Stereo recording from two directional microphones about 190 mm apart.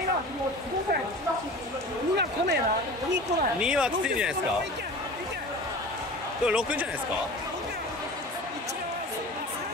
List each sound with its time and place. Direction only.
2.1 s a sound: 60° right (ahead or behind)
3.6 s speech: 5° right (ahead or behind)
6.4 s speech: 5° right (ahead or behind)